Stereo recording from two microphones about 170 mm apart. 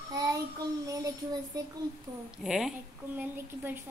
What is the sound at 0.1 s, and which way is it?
Child singing, 20° right (ahead or behind).